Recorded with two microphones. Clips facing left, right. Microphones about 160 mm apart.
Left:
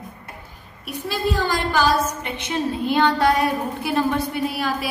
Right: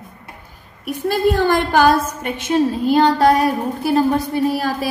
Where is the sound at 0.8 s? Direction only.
55° right (ahead or behind).